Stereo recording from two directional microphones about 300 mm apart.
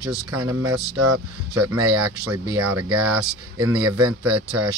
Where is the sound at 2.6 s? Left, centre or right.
Right.